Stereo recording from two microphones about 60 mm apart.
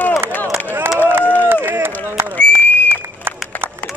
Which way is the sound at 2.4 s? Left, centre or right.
Left.